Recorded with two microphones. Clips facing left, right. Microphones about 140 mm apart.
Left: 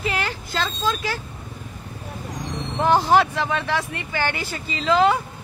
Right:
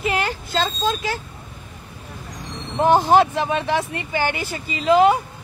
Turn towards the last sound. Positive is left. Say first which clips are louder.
# right 3 dB
turn(degrees=-15)  # may be behind; listen again after turning